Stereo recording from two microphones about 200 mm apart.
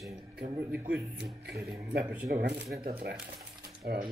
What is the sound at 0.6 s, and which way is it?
Speech, 10° right (ahead or behind).